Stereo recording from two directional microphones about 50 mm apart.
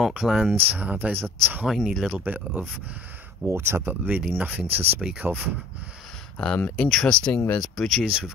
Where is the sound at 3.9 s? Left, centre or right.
Right.